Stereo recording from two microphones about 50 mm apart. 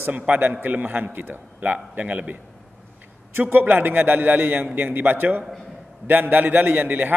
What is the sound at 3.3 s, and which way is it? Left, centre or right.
A man's voice, right.